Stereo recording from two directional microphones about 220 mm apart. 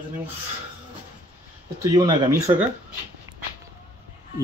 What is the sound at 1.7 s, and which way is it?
Speech, 20° right (ahead or behind).